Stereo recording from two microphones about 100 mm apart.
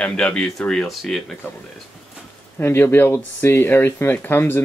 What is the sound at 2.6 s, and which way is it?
Speech, 25° left (ahead or behind).